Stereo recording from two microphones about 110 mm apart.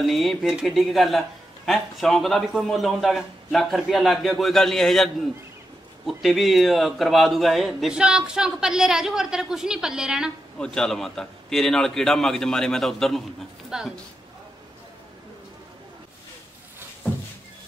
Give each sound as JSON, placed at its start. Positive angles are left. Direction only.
{"t": 0.0, "sound": "a man's voice", "side_deg": 0}
{"t": 10.6, "sound": "a man's voice", "side_deg": 5}